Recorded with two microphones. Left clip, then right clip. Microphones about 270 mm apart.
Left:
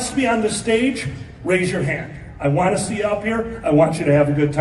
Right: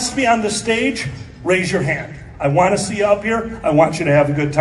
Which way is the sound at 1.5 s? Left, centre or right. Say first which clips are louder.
Right 3 dB; centre.